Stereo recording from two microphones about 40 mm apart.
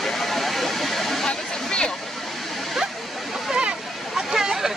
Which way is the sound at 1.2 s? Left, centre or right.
Left.